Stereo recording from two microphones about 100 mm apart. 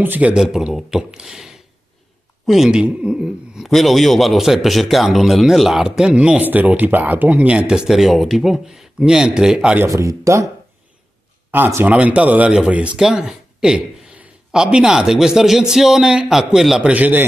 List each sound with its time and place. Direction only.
0.0 s speech: 15° right (ahead or behind)
9.8 s speech: 30° right (ahead or behind)
11.5 s speech: 20° right (ahead or behind)